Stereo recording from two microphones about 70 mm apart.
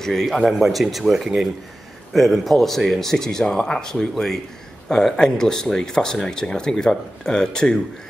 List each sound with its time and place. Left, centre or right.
0.0 s speech: centre